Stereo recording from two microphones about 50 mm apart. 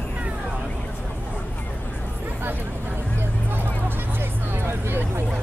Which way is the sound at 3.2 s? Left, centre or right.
Right.